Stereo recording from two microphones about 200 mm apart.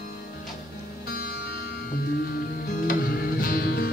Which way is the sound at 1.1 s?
50° left (ahead or behind).